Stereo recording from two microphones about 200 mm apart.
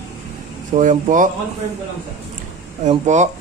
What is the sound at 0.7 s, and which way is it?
Speech, 40° right (ahead or behind).